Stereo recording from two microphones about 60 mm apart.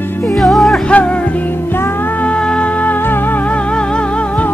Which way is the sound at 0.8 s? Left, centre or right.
Left.